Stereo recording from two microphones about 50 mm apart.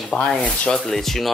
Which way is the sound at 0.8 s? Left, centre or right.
Centre.